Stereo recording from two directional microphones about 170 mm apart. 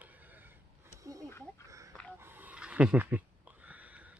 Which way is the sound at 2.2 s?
10° right (ahead or behind).